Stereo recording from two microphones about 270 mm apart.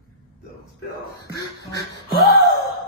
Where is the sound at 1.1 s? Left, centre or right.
Left.